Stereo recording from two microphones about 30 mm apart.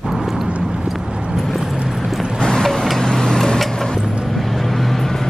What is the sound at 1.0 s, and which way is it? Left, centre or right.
Clip-clop, right.